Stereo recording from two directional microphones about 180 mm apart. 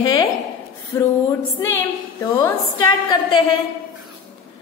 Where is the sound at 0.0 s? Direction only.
25° left (ahead or behind).